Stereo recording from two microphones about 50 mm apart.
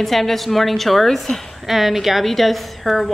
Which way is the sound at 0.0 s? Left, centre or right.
Centre.